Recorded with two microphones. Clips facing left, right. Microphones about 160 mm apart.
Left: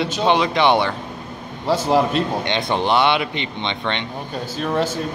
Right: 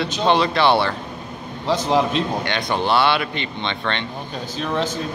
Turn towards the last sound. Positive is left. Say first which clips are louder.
# left 2 dB
turn(degrees=10)  # may be behind; listen again after turning